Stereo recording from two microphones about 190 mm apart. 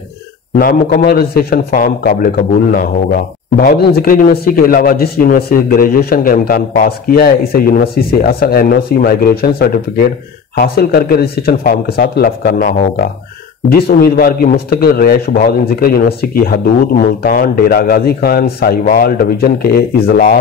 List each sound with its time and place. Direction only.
0.6 s a man's voice: 55° left (ahead or behind)